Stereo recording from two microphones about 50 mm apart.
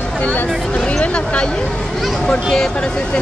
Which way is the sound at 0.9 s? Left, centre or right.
Left.